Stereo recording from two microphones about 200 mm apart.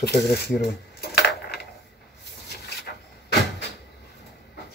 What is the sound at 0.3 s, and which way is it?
Coin, 55° left (ahead or behind).